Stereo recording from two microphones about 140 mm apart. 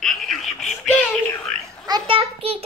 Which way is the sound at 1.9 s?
40° right (ahead or behind).